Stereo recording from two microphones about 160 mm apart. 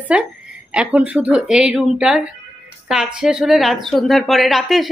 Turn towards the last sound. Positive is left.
turn(degrees=0)  # may be behind; listen again after turning